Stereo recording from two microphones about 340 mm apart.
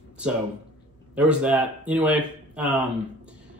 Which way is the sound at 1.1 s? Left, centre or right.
Centre.